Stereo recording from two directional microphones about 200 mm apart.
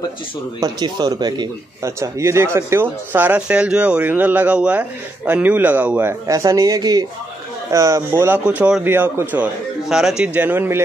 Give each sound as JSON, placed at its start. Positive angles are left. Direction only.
{"t": 0.6, "sound": "speech", "side_deg": -20}